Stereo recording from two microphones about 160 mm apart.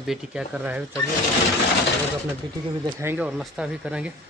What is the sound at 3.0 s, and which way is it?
Speech, 10° right (ahead or behind).